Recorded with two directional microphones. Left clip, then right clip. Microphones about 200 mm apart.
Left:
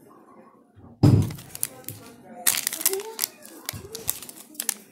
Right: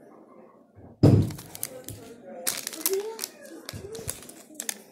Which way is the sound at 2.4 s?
40° left (ahead or behind).